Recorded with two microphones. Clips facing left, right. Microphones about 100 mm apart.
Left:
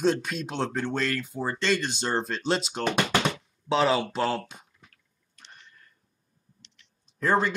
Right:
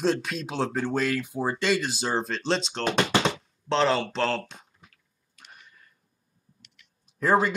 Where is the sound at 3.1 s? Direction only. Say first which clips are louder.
Right 1 dB; 25° right (ahead or behind).